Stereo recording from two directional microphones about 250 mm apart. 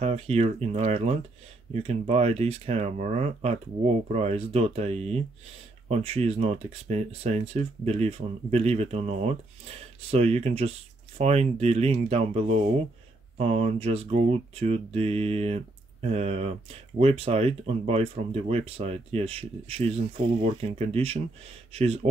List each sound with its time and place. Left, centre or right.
0.0 s speech: right